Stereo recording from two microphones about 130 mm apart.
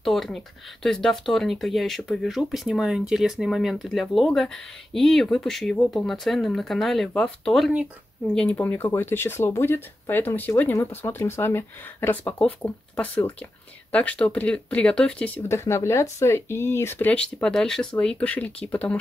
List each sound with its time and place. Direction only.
0.0 s speech: centre (ahead or behind)